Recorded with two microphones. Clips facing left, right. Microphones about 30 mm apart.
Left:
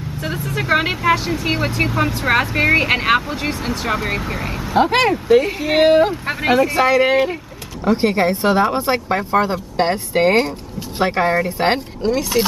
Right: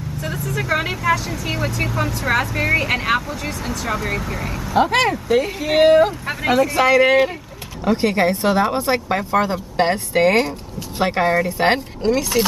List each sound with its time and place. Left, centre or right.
0.2 s speech: left; by 12.4 s centre